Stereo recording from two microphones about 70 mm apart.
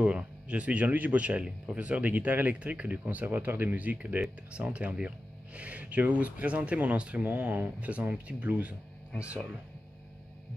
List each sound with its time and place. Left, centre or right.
0.0 s speech: centre